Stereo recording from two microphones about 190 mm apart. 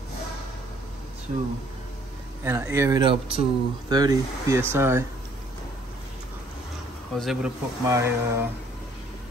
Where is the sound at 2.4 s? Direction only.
15° right (ahead or behind).